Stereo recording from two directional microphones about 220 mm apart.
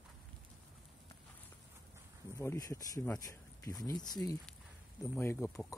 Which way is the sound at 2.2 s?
15° left (ahead or behind).